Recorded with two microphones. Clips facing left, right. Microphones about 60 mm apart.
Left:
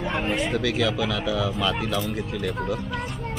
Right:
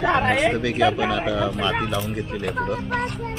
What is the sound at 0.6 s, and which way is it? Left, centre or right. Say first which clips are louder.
Speech: right 4 dB; right.